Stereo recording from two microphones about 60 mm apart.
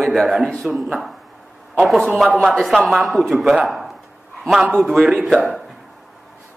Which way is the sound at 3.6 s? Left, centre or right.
Centre.